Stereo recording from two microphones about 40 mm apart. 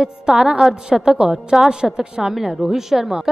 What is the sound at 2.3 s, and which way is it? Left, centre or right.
Speech, centre.